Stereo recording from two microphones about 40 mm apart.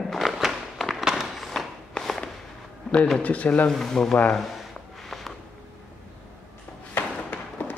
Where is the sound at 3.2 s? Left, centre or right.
Left.